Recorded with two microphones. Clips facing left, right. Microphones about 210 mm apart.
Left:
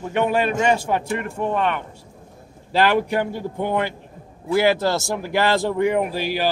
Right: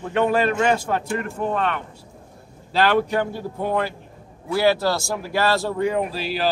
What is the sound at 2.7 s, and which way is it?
Speech, 15° left (ahead or behind).